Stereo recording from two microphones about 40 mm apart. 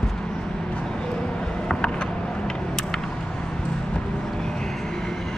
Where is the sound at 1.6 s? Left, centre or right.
Left.